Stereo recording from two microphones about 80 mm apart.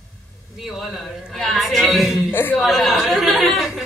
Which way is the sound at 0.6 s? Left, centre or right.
Centre.